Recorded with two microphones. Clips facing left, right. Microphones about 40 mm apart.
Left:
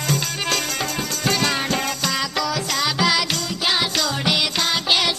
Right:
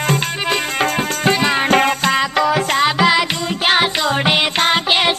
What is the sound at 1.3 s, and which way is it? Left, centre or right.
Music, right.